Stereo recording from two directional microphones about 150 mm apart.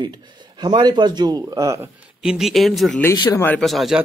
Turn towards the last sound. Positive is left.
turn(degrees=0)  # may be behind; listen again after turning